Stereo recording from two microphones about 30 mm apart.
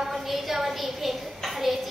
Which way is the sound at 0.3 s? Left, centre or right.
Centre.